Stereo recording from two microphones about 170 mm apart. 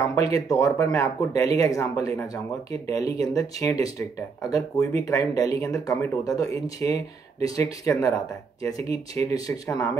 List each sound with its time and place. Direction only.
0.1 s speech: 20° left (ahead or behind)